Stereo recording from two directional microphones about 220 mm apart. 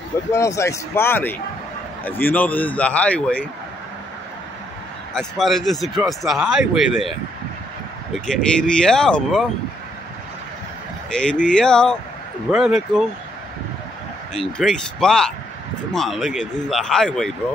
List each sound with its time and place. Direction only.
0.3 s a man's voice: 15° left (ahead or behind)
5.1 s speech: centre (ahead or behind)
11.1 s speech: 5° left (ahead or behind)
14.3 s speech: centre (ahead or behind)